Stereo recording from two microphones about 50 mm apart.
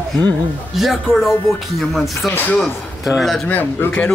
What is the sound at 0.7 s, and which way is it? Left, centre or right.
Speech, centre.